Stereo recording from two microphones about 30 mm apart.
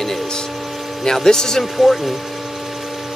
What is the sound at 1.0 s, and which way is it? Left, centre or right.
Speech, centre.